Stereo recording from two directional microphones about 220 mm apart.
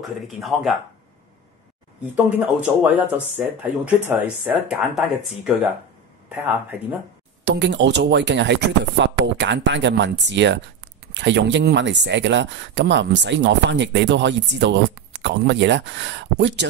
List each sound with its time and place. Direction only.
0.0 s speech: centre (ahead or behind)
2.3 s speech: 5° right (ahead or behind)
7.4 s speech: 50° right (ahead or behind)